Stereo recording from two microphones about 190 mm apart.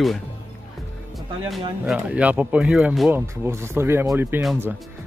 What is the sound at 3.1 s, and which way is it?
Speech, 15° right (ahead or behind).